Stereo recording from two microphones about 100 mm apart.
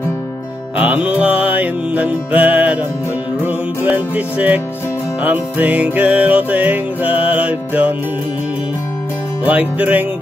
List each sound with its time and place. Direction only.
0.7 s music: 15° right (ahead or behind)
9.4 s music: 15° right (ahead or behind)